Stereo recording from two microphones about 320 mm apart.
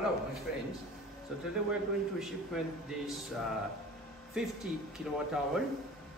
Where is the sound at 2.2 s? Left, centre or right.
Centre.